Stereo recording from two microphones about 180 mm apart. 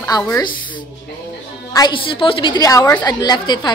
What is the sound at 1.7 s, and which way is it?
A woman's voice, 25° left (ahead or behind).